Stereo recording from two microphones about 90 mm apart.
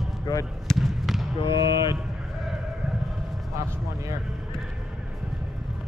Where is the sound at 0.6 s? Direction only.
Centre (ahead or behind).